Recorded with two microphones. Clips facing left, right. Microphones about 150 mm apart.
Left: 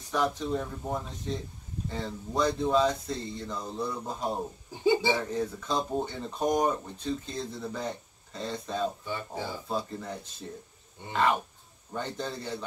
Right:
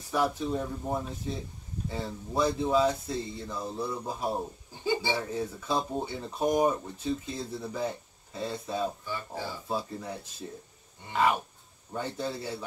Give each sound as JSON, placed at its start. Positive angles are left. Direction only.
{"t": 0.1, "sound": "speech", "side_deg": -10}
{"t": 9.0, "sound": "speech", "side_deg": 20}
{"t": 9.7, "sound": "speech", "side_deg": -10}
{"t": 11.9, "sound": "speech", "side_deg": -10}